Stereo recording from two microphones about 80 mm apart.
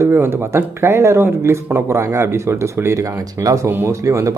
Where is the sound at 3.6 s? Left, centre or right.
Right.